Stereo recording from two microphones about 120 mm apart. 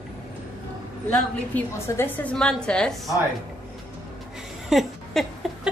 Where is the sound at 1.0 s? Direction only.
15° left (ahead or behind).